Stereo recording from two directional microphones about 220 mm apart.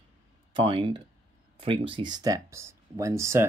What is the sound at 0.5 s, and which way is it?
Speech, 25° right (ahead or behind).